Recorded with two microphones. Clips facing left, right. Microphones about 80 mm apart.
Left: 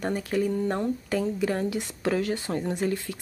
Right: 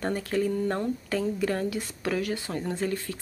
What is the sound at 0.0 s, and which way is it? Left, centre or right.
Speech, centre.